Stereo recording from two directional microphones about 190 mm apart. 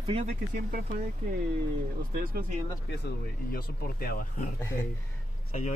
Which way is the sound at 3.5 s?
50° left (ahead or behind).